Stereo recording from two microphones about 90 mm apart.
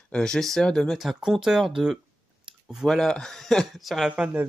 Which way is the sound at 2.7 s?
5° right (ahead or behind).